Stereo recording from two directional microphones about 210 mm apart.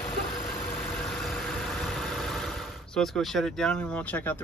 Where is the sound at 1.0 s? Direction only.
Centre (ahead or behind).